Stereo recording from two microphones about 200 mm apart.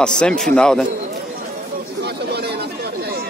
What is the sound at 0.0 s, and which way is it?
Speech, 5° left (ahead or behind).